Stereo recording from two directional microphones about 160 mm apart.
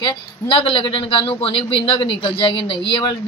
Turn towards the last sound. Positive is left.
turn(degrees=30)  # may be behind; listen again after turning